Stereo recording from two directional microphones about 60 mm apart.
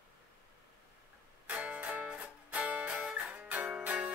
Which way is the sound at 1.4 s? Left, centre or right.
Right.